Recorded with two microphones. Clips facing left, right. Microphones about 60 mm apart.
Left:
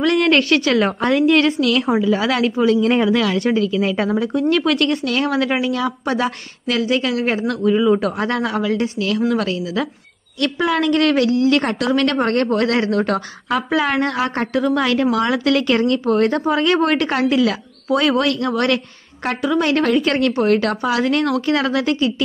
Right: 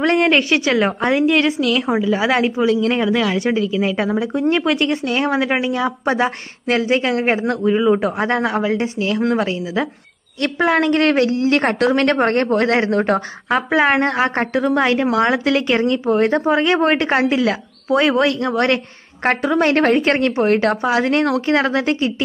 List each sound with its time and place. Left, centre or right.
0.0 s a woman's voice: right
0.3 s speech: centre
2.2 s a woman's voice: right
2.5 s speech: centre
3.2 s speech: centre
4.3 s a woman's voice: right
19.2 s a woman's voice: right